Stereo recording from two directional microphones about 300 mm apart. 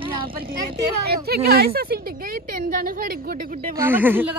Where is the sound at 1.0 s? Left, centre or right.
Right.